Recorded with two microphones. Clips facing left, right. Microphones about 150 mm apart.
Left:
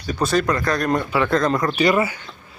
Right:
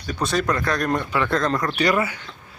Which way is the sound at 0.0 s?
5° left (ahead or behind).